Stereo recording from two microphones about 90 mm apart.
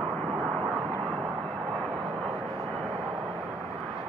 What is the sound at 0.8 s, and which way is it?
Vehicle, 25° right (ahead or behind).